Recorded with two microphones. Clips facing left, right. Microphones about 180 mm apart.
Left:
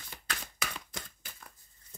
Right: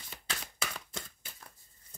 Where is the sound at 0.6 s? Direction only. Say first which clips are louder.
Even; 30° right (ahead or behind).